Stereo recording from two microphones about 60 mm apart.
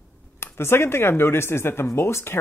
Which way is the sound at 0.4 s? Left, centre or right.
Left.